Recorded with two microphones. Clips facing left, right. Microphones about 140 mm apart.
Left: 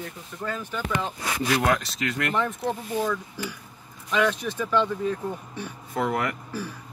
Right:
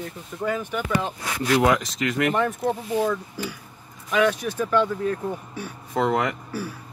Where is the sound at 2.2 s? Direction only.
5° right (ahead or behind).